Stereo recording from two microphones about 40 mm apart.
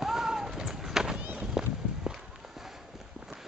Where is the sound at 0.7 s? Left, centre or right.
Centre.